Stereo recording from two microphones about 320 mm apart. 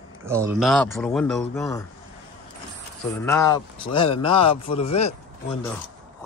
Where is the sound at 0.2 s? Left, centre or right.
Centre.